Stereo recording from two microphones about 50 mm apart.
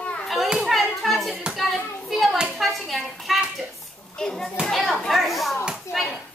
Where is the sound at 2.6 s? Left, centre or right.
Centre.